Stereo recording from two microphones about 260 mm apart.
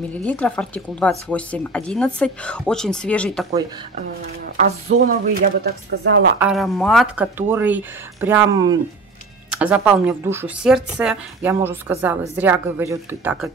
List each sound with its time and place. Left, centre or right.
0.1 s speech: centre
5.0 s speech: right
6.4 s speech: centre